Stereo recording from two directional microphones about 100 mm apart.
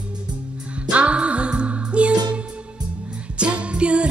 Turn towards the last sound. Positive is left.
turn(degrees=-10)  # may be behind; listen again after turning